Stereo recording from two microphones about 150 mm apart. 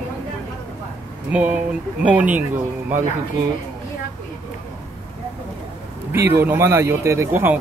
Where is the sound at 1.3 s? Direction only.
10° right (ahead or behind).